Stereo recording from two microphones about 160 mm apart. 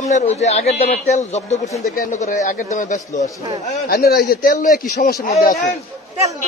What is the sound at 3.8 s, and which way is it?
Speech, 70° left (ahead or behind).